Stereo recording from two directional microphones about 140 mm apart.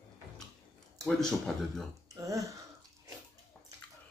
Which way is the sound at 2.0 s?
25° right (ahead or behind).